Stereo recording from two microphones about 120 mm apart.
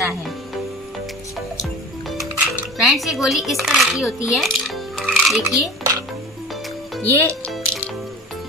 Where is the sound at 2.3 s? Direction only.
5° right (ahead or behind).